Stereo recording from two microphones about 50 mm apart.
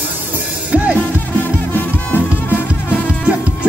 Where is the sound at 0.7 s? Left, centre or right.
Right.